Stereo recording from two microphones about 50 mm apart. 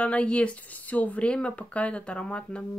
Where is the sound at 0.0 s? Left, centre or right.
Left.